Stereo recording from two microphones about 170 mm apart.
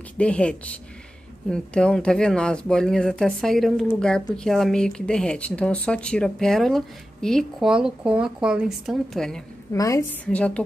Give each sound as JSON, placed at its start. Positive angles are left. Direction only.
{"t": 0.2, "sound": "a woman's voice", "side_deg": 5}
{"t": 9.7, "sound": "a woman's voice", "side_deg": 20}
{"t": 10.2, "sound": "a woman's voice", "side_deg": 5}